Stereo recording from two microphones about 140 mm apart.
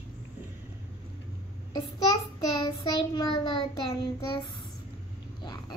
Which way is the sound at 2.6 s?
30° left (ahead or behind).